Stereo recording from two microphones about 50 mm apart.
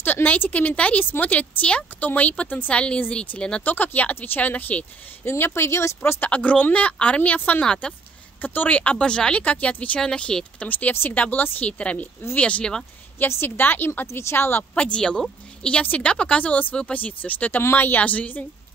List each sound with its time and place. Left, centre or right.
0.0 s speech: left; by 3.6 s centre
3.6 s speech: left
5.4 s speech: left
6.2 s speech: left
7.6 s speech: centre
8.4 s speech: left
9.4 s speech: left
10.7 s speech: left
11.8 s speech: left
13.3 s speech: left
14.7 s speech: left